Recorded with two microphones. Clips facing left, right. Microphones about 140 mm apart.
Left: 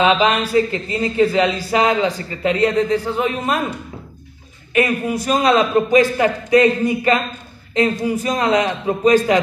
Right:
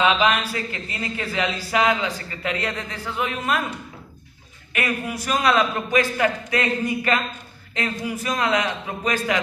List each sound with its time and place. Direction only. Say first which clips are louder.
0.0 s speech: left 4 dB; 25° left (ahead or behind)
4.7 s speech: left 8 dB; 25° left (ahead or behind)